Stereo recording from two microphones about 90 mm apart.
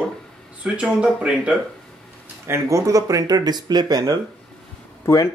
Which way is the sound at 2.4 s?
30° right (ahead or behind).